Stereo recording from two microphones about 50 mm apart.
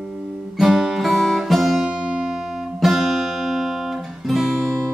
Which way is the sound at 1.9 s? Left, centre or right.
Right.